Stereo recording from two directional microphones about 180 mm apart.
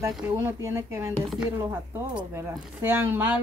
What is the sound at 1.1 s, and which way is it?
Speech, centre (ahead or behind).